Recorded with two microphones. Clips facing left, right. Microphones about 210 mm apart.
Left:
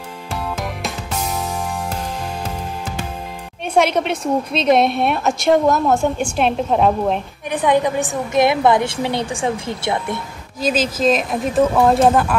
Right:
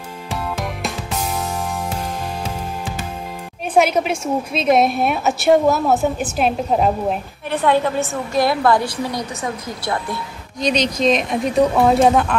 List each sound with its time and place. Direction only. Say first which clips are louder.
0.6 s music: right 1 dB; centre (ahead or behind)
3.7 s a woman's voice: even; 5° right (ahead or behind)
7.5 s a woman's voice: left 1 dB; 15° left (ahead or behind)
10.6 s a woman's voice: even; 5° left (ahead or behind)